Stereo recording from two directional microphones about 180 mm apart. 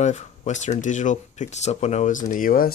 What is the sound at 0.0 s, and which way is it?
Speech, 40° left (ahead or behind).